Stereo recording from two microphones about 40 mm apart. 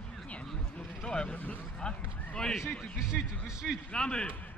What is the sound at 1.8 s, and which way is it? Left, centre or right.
Speech, left.